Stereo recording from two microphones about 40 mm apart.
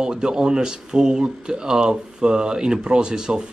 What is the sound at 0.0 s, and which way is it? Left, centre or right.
Speech, centre.